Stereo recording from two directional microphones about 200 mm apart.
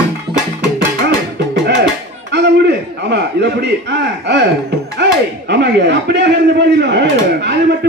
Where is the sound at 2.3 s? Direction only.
60° right (ahead or behind).